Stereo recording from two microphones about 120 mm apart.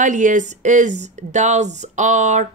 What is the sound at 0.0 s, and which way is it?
Speech, 90° right.